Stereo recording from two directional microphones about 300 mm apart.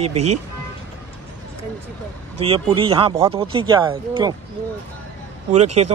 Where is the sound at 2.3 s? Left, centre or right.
Centre.